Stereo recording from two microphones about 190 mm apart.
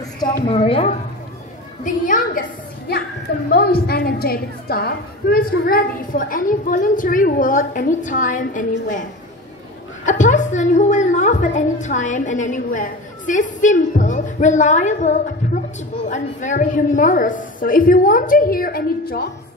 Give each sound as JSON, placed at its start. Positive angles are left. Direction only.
{"t": 0.2, "sound": "a woman's voice", "side_deg": 30}
{"t": 1.9, "sound": "a woman's voice", "side_deg": 45}
{"t": 3.5, "sound": "a woman's voice", "side_deg": 55}
{"t": 10.0, "sound": "a woman's voice", "side_deg": 40}